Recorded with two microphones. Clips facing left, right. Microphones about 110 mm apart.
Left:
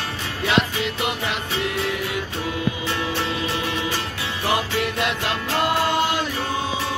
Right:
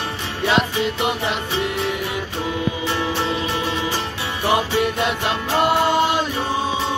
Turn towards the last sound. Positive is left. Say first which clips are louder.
# right 4 dB
turn(degrees=-25)  # may be behind; listen again after turning